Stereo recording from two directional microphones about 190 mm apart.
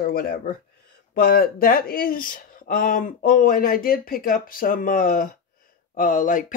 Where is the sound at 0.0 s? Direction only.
50° left (ahead or behind).